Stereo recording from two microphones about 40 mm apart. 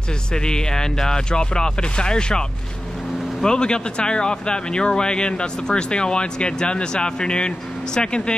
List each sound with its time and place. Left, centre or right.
0.3 s speech: centre
3.4 s speech: left